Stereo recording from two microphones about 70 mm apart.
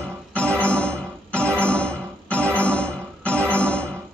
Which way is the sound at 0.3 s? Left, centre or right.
Centre.